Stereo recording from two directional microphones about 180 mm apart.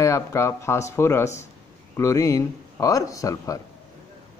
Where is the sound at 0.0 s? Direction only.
20° left (ahead or behind).